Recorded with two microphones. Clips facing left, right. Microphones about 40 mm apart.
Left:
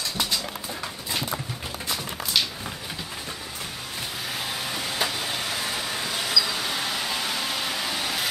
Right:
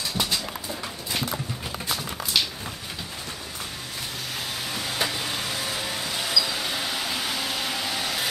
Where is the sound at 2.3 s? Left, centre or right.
Centre.